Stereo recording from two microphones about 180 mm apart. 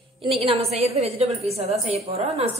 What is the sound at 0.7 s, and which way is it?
A woman's voice, 35° right (ahead or behind).